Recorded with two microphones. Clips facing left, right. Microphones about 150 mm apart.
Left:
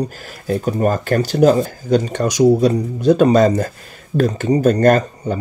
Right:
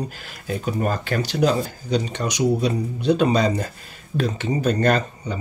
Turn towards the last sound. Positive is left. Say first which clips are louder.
# left 7 dB
turn(degrees=45)  # may be behind; listen again after turning